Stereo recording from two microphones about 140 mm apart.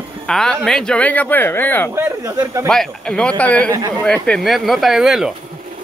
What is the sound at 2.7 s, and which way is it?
Speech, 5° left (ahead or behind).